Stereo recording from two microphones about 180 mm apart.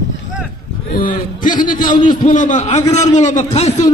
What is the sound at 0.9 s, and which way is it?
A man's voice, 50° left (ahead or behind).